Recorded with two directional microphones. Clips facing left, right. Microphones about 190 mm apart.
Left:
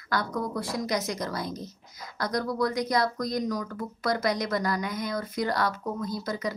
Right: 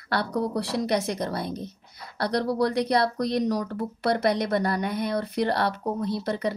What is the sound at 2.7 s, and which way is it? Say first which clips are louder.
Speech: right 3 dB; 65° right (ahead or behind).